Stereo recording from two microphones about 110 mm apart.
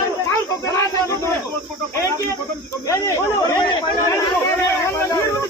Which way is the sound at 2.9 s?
35° left (ahead or behind).